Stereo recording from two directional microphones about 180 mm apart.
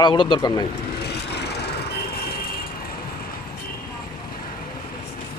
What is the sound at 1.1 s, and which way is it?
Vehicle, 65° left (ahead or behind).